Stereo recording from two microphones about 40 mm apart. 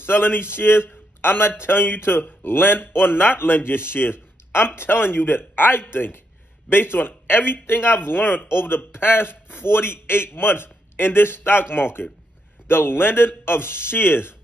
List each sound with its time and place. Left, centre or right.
0.0 s a man's voice: left